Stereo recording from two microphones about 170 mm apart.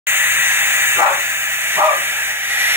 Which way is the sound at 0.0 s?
10° right (ahead or behind).